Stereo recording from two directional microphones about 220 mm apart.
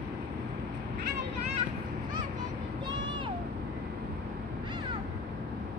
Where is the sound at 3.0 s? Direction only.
20° right (ahead or behind).